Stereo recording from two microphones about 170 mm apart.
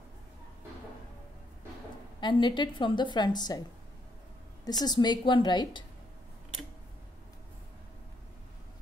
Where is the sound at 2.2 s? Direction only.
25° left (ahead or behind).